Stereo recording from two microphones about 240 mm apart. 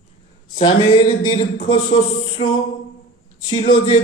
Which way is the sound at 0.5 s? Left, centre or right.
Left.